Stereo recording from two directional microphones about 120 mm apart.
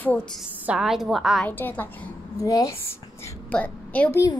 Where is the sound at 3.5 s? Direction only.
10° left (ahead or behind).